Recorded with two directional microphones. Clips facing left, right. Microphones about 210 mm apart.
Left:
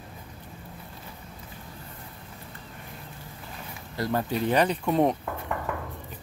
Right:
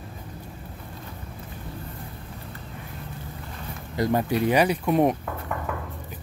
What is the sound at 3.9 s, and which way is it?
Speech, 15° right (ahead or behind).